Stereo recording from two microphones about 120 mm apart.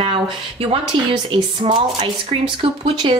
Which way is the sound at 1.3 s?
45° right (ahead or behind).